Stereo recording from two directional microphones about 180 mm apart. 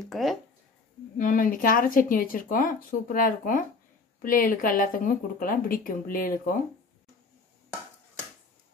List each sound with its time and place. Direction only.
0.0 s speech: centre (ahead or behind)
1.1 s a woman's voice: 50° left (ahead or behind)